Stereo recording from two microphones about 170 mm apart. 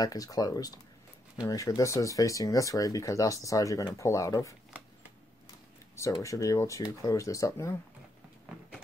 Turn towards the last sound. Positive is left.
turn(degrees=15)  # may be behind; listen again after turning